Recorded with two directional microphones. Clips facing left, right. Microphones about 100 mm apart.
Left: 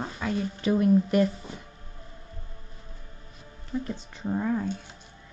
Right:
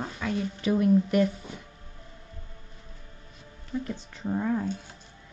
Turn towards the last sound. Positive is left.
turn(degrees=0)  # may be behind; listen again after turning